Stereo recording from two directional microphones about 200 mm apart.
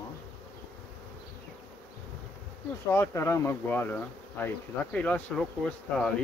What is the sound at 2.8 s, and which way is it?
Speech, 15° left (ahead or behind).